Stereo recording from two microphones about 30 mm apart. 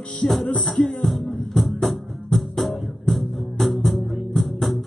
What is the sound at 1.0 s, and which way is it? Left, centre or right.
Music, centre.